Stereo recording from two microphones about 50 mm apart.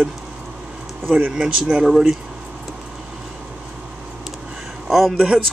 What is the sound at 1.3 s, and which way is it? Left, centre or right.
Speech, centre.